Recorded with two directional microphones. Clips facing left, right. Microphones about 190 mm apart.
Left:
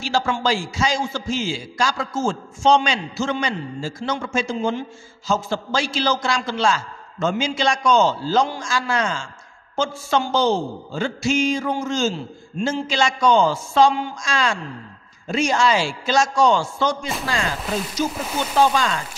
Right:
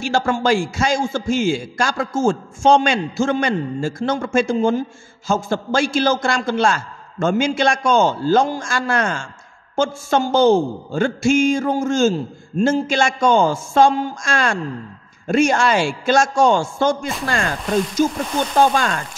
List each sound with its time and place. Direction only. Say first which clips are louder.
0.0 s a man's voice: right 3 dB; 50° right (ahead or behind)
18.6 s a man's voice: right 2 dB; 50° right (ahead or behind)